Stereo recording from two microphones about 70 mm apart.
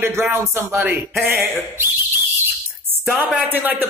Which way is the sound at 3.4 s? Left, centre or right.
Right.